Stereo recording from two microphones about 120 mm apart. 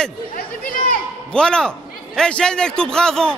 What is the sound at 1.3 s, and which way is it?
A man's voice, 5° left (ahead or behind).